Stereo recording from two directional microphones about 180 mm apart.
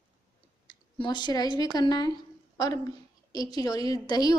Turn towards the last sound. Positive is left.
turn(degrees=20)  # may be behind; listen again after turning